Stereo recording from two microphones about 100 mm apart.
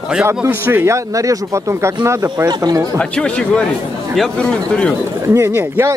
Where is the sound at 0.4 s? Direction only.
20° right (ahead or behind); by 3.0 s 35° right (ahead or behind).